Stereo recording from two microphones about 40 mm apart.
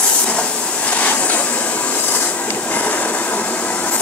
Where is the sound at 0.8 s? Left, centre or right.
Left.